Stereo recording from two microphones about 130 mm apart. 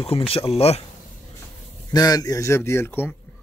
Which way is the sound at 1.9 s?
30° left (ahead or behind).